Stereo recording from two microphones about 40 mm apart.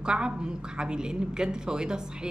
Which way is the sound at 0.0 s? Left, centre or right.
Right.